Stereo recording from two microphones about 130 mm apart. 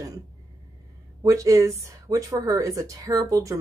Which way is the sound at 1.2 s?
25° right (ahead or behind).